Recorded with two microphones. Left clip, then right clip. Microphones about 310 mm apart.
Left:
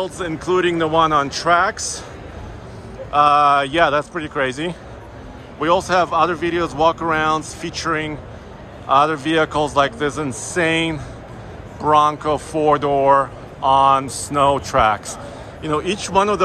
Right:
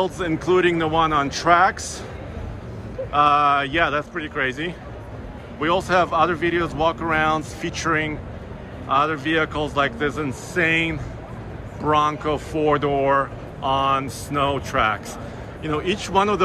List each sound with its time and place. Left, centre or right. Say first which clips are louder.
0.0 s speech: right 1 dB; centre
3.1 s speech: left 4 dB; centre